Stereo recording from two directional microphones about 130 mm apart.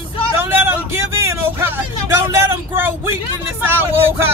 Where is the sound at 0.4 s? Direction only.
15° right (ahead or behind).